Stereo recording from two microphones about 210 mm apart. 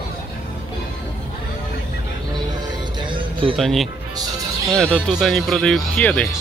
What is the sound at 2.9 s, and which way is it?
Music, 25° right (ahead or behind).